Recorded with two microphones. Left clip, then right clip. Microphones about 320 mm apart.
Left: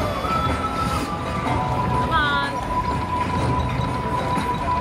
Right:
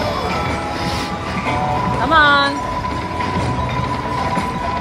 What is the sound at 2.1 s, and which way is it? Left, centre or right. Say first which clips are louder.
Music: right 11 dB; centre.